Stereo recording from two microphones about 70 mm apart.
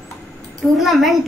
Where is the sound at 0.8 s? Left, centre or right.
Centre.